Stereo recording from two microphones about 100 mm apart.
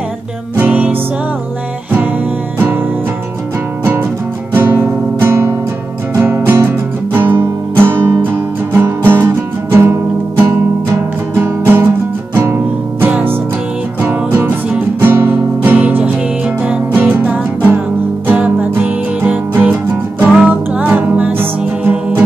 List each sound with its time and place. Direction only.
0.6 s music: 15° right (ahead or behind)
4.6 s music: 20° right (ahead or behind)
13.0 s music: 20° right (ahead or behind)
20.3 s music: 10° right (ahead or behind)